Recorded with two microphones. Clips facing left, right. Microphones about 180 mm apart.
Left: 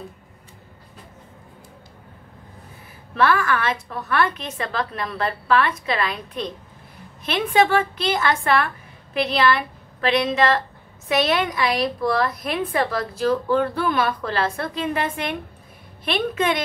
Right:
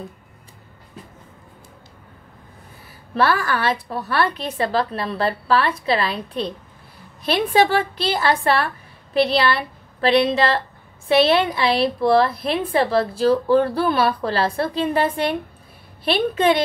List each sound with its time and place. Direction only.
3.2 s a woman's voice: 35° right (ahead or behind)